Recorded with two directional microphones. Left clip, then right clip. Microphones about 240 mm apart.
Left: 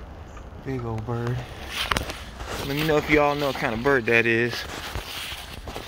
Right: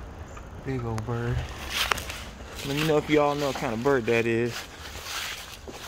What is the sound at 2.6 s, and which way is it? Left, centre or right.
Speech, centre.